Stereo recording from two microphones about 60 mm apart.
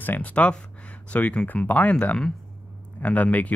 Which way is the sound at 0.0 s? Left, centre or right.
Left.